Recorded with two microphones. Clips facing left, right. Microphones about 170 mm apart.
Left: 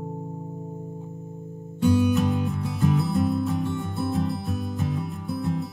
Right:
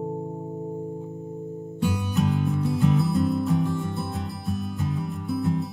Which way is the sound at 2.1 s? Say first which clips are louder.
Even; centre (ahead or behind).